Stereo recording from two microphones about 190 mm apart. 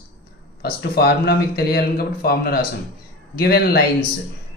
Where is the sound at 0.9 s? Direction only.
55° left (ahead or behind).